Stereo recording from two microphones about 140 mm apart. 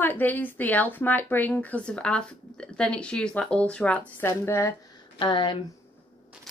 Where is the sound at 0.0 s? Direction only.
15° left (ahead or behind).